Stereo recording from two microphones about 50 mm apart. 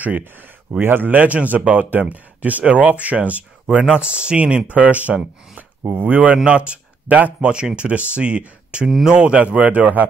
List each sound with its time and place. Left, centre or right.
0.2 s speech: right
8.8 s speech: centre
9.1 s speech: right
9.6 s speech: right